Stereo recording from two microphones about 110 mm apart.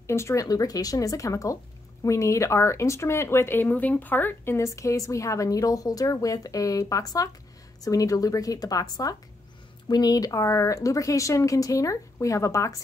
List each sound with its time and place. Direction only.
0.0 s speech: 25° left (ahead or behind)
9.8 s speech: 35° left (ahead or behind)